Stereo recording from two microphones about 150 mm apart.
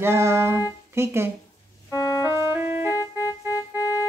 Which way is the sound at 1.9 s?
25° left (ahead or behind).